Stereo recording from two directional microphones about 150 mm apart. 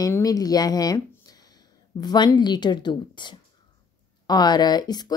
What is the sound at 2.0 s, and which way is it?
Speech, 30° left (ahead or behind).